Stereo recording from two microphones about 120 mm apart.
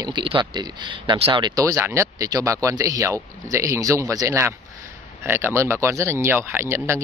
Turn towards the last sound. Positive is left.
turn(degrees=-20)  # may be behind; listen again after turning